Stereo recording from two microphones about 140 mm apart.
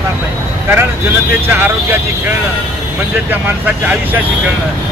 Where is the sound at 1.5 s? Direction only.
15° right (ahead or behind).